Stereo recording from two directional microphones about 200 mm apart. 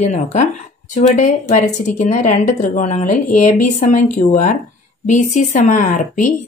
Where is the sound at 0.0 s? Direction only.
35° left (ahead or behind).